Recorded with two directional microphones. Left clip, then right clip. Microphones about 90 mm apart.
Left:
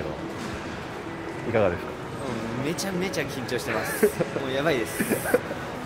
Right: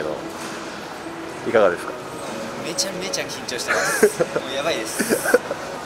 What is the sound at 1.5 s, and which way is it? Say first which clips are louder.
Speech: right 7 dB; 15° right (ahead or behind).